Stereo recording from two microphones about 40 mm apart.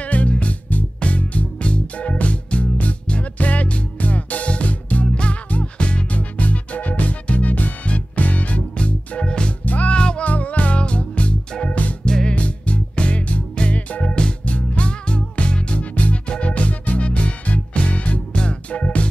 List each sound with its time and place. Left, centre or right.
0.0 s music: left
5.0 s music: left
9.7 s music: left
9.9 s music: left
10.2 s music: left
12.0 s music: centre
12.3 s music: left
14.0 s music: left
18.3 s music: left
18.7 s music: left